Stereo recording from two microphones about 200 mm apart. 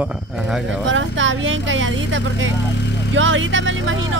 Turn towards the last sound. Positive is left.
turn(degrees=-75)  # may be behind; listen again after turning